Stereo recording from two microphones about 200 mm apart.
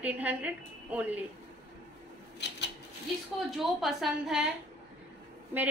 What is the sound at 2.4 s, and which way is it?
Rub, 60° left (ahead or behind).